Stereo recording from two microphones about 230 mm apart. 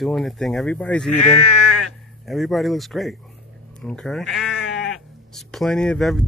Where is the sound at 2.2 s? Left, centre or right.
Centre.